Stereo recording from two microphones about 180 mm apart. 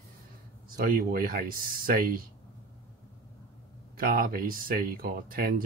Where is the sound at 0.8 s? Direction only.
55° right (ahead or behind).